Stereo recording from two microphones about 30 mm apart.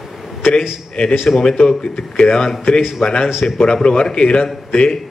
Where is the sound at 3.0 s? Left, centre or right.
Left.